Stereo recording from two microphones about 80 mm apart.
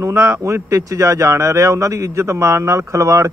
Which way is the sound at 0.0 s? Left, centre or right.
Right.